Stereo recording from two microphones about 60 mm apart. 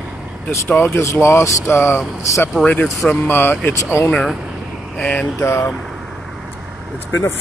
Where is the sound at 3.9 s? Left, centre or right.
Left.